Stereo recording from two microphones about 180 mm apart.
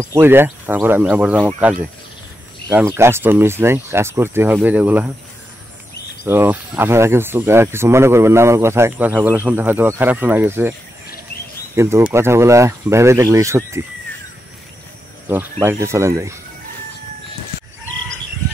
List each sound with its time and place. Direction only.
0.0 s speech: 15° right (ahead or behind)
2.7 s speech: 15° right (ahead or behind)
6.2 s speech: 10° right (ahead or behind)
11.7 s speech: 15° right (ahead or behind)
15.6 s speech: 15° right (ahead or behind)